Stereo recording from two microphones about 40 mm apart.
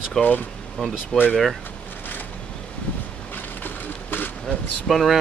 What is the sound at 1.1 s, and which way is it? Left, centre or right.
Speech, centre.